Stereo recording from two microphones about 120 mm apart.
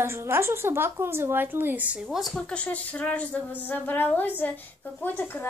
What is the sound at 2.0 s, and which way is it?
Speech, centre (ahead or behind).